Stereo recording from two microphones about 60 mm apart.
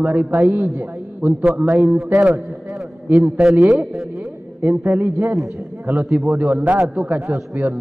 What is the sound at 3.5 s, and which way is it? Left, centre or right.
Speech, centre.